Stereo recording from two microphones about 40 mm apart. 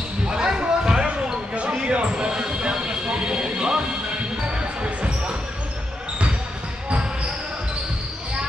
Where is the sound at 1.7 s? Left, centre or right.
Right.